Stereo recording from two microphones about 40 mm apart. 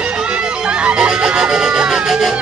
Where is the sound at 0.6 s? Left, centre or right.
Right.